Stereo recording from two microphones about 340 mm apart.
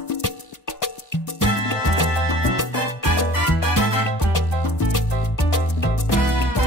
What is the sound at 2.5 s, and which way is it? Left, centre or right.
Music, left.